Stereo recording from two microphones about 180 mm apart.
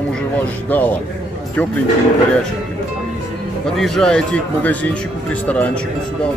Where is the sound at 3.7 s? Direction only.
Centre (ahead or behind).